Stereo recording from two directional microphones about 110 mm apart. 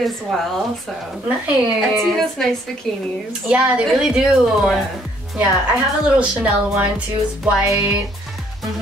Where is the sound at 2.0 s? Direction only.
5° left (ahead or behind).